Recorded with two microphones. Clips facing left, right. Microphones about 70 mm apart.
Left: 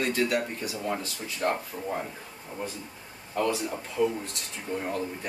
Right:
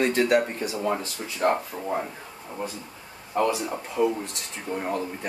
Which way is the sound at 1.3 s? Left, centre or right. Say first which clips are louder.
Right 5 dB; right.